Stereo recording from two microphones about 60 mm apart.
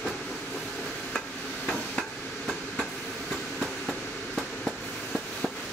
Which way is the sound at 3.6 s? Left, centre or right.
Centre.